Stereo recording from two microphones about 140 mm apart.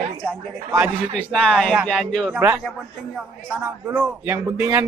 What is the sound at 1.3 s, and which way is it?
Speech, 5° left (ahead or behind).